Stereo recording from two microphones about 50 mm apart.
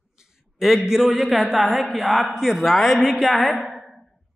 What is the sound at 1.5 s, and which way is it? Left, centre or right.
A man's voice, centre.